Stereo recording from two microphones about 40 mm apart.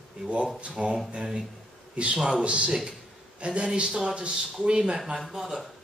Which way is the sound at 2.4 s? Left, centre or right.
Right.